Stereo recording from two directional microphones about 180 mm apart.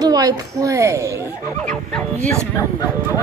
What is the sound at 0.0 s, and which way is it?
Speech, 20° right (ahead or behind).